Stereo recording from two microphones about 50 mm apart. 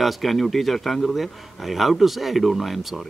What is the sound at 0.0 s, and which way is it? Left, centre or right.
A man's voice, centre.